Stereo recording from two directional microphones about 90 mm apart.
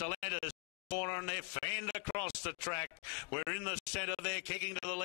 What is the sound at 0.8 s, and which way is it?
Speech, 15° left (ahead or behind).